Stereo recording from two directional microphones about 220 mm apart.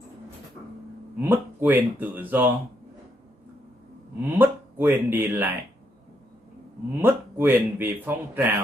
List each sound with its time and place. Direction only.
1.2 s a man's voice: 10° right (ahead or behind)
4.2 s a man's voice: 10° right (ahead or behind)
6.9 s a man's voice: 10° right (ahead or behind)